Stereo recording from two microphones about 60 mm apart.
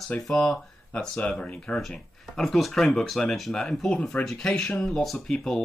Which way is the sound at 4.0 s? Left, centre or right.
Centre.